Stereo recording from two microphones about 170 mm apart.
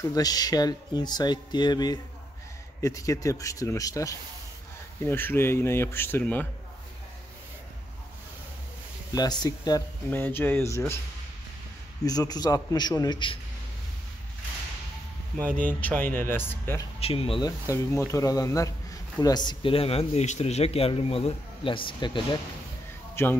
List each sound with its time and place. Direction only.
0.1 s speech: 20° left (ahead or behind)
9.1 s speech: 25° left (ahead or behind)
10.0 s speech: 10° left (ahead or behind)
12.0 s speech: 20° left (ahead or behind)
15.3 s speech: 10° left (ahead or behind)
17.0 s speech: 35° left (ahead or behind)
17.5 s speech: 15° left (ahead or behind)
23.2 s speech: 15° left (ahead or behind)